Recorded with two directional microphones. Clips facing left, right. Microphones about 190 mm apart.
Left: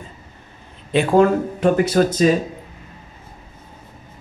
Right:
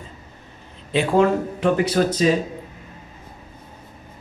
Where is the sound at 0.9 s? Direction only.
45° left (ahead or behind).